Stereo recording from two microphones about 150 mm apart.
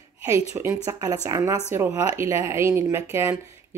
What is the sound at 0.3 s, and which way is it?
Speech, 20° right (ahead or behind).